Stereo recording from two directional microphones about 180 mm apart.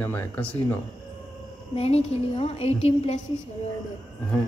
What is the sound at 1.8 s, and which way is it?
A woman's voice, 35° left (ahead or behind).